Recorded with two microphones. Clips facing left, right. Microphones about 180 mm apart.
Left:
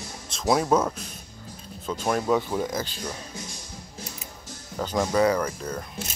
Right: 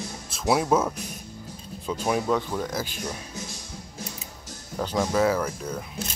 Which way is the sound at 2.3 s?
10° left (ahead or behind).